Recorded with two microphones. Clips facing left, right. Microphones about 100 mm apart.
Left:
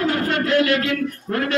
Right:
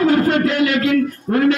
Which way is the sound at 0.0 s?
25° right (ahead or behind).